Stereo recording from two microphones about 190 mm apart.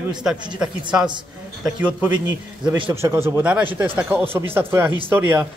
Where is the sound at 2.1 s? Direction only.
25° right (ahead or behind).